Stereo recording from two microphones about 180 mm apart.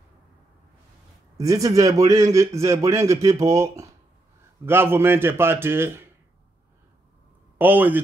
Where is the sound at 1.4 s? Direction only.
20° right (ahead or behind).